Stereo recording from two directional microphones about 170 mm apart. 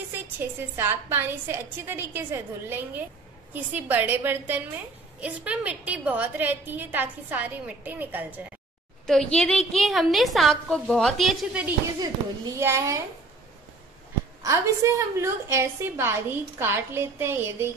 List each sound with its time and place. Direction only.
0.1 s a woman's voice: 15° right (ahead or behind)
9.0 s a woman's voice: 5° left (ahead or behind)
12.0 s a woman's voice: 20° right (ahead or behind)
14.4 s a woman's voice: 20° right (ahead or behind)